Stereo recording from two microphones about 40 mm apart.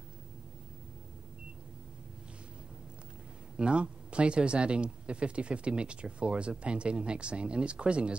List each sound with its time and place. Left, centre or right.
3.5 s speech: right